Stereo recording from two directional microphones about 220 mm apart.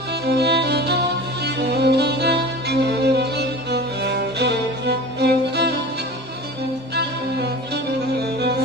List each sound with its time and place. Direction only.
0.3 s music: 50° right (ahead or behind)
7.0 s music: 50° right (ahead or behind)